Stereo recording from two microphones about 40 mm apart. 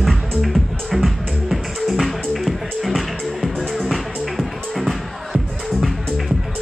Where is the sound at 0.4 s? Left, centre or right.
Centre.